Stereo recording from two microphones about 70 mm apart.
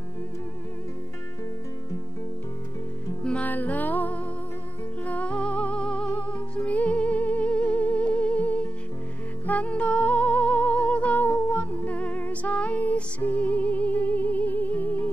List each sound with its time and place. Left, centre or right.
3.3 s music: left